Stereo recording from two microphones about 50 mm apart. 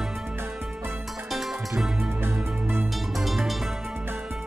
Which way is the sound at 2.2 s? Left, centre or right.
Right.